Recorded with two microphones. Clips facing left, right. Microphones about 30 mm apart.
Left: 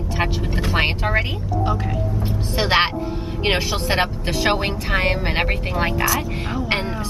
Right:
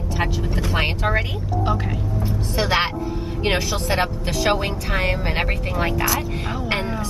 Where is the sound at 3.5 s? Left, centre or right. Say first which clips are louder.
Left 1 dB; left; by 6.1 s centre.